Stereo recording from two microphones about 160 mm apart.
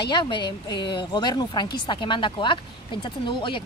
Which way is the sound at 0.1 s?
30° left (ahead or behind).